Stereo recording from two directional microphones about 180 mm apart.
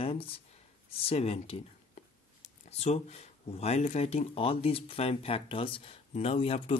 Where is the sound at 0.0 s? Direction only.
30° left (ahead or behind).